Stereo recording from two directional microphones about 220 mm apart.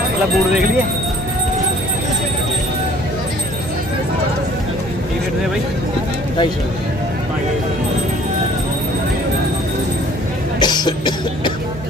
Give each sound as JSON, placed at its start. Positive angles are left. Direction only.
{"t": 10.6, "sound": "cough", "side_deg": 20}